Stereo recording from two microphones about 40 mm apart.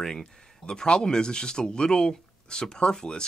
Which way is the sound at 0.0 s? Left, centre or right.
Centre.